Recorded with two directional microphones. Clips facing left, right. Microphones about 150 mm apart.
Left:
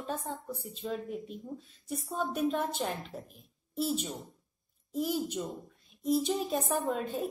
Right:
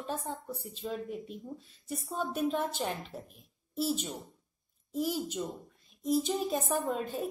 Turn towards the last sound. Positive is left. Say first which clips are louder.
# left 1 dB
turn(degrees=0)  # may be behind; listen again after turning